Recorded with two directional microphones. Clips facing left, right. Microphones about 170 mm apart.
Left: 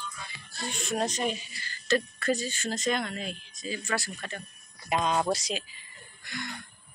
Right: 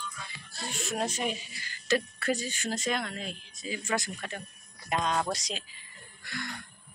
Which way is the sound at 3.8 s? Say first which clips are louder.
Right 2 dB; 20° right (ahead or behind).